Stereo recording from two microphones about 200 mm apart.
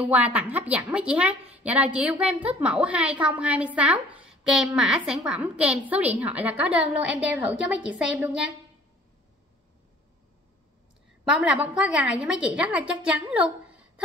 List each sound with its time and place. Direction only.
0.0 s a woman's voice: 5° right (ahead or behind)
11.2 s a woman's voice: 5° right (ahead or behind)